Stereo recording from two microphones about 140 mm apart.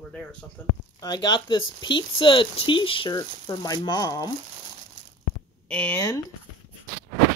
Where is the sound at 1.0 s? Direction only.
30° left (ahead or behind).